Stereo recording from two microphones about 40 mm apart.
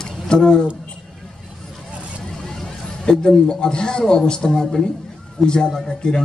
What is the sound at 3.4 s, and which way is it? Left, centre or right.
Speech, left.